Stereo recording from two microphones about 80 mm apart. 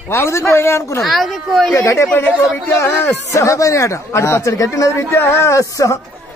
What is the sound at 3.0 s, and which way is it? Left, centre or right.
Speech, left.